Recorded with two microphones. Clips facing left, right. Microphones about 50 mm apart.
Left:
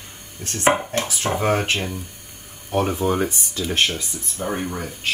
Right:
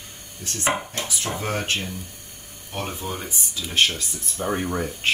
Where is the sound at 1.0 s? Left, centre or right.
Left.